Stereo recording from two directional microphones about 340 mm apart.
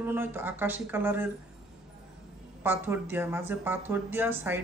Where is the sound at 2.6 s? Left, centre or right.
Centre.